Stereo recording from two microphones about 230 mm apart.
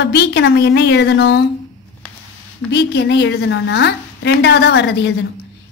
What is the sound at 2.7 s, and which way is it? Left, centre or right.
A woman's voice, left.